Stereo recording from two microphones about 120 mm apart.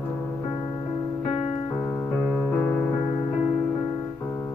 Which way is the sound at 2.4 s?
10° left (ahead or behind).